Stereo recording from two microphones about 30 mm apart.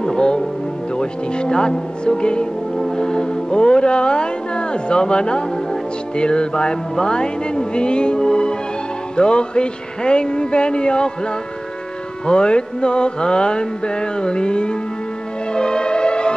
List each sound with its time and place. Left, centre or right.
0.0 s speech: left
0.9 s music: left
3.0 s speech: left
6.1 s music: left
12.3 s music: left